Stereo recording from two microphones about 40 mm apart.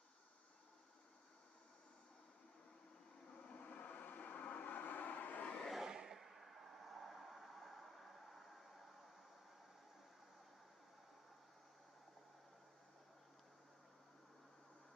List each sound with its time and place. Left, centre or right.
3.3 s vehicle: left
5.9 s vehicle: centre
6.1 s a sound: centre